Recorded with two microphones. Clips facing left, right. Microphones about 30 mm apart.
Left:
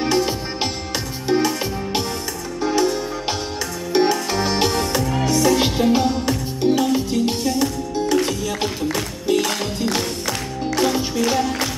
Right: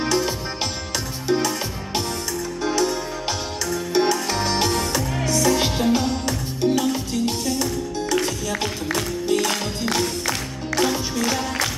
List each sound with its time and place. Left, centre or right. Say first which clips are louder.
0.0 s music: left 2 dB; centre
1.3 s music: left 2 dB; centre
2.6 s music: left 4 dB; centre
5.4 s music: left 2 dB; centre
5.9 s music: left 4 dB; centre
11.0 s music: left 4 dB; centre